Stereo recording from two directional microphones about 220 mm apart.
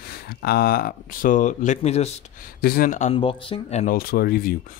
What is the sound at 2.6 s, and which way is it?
Speech, 40° left (ahead or behind).